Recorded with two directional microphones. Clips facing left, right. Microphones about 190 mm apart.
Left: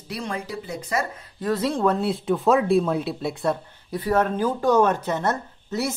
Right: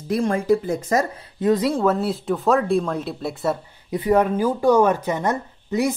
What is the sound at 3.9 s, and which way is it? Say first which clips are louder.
Speech: right 4 dB; 15° right (ahead or behind).